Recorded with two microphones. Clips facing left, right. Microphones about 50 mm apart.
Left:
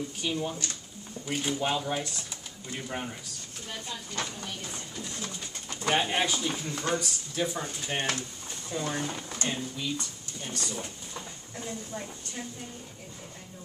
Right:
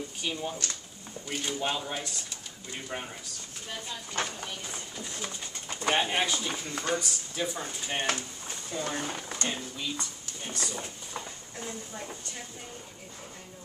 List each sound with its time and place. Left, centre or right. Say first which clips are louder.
0.2 s speech: left 2 dB; centre
4.1 s speech: right 3 dB; right
4.6 s speech: even; centre
9.9 s a sound: left 1 dB; centre